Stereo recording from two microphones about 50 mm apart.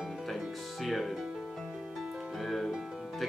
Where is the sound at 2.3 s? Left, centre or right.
Centre.